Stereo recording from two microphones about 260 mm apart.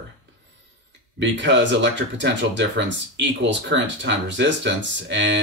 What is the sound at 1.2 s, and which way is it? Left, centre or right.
Speech, right.